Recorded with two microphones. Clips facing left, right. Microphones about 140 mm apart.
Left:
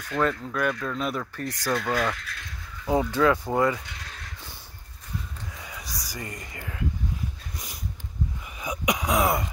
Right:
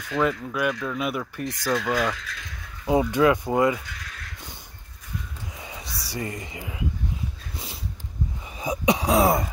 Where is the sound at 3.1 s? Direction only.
15° right (ahead or behind).